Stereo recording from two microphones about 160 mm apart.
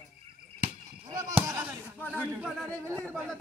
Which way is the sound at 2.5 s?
5° left (ahead or behind).